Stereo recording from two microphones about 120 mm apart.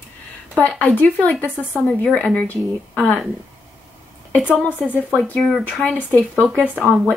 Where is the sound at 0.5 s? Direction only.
10° left (ahead or behind).